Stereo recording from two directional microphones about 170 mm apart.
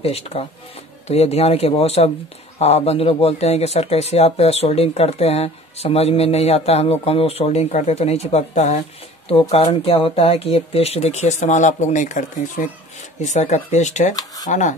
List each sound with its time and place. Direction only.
0.0 s speech: 35° left (ahead or behind)
14.1 s speech: 20° left (ahead or behind)
14.5 s speech: 45° left (ahead or behind)